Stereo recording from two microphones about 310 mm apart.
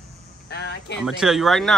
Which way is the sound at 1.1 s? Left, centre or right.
Centre.